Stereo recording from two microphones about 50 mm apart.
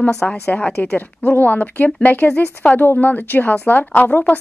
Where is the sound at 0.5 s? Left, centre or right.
Left.